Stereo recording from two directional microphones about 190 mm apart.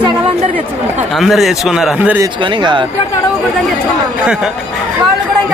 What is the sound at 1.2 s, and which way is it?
Speech, centre (ahead or behind).